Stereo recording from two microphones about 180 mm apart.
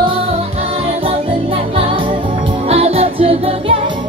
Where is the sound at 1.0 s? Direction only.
30° right (ahead or behind).